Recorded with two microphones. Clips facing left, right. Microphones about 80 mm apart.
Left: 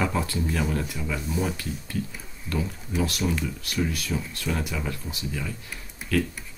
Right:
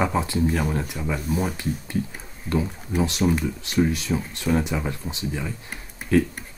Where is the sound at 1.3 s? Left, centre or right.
Right.